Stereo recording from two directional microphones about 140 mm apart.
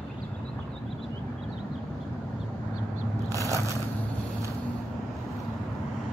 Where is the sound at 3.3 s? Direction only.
25° right (ahead or behind).